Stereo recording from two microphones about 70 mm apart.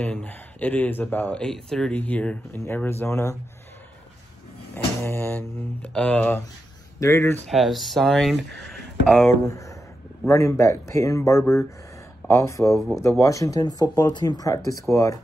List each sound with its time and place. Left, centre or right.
0.0 s speech: left
1.3 s speech: centre
2.0 s speech: left
3.1 s speech: left
4.7 s speech: left
5.9 s speech: centre
7.0 s speech: left
7.4 s speech: centre
9.3 s speech: left
12.6 s speech: centre
13.2 s speech: left